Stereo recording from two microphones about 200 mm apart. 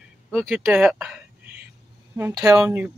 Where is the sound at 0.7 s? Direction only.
5° right (ahead or behind).